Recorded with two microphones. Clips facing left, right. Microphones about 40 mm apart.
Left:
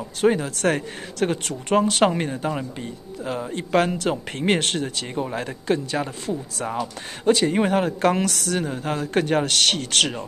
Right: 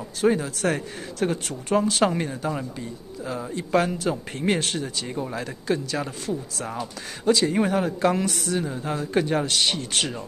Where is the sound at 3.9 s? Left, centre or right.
Left.